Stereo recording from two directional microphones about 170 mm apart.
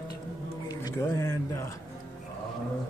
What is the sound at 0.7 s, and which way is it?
Speech, 20° left (ahead or behind).